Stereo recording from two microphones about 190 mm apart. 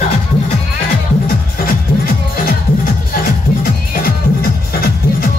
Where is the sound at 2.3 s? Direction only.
50° left (ahead or behind).